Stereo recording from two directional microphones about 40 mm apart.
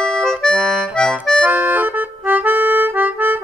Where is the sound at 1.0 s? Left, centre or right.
Centre.